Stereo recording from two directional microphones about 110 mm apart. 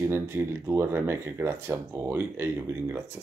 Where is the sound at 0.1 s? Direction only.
20° right (ahead or behind).